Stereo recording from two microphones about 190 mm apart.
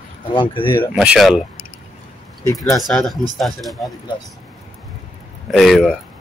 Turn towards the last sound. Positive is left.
turn(degrees=0)  # may be behind; listen again after turning